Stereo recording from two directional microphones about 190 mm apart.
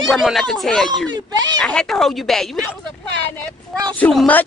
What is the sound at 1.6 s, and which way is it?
Speech, 5° left (ahead or behind).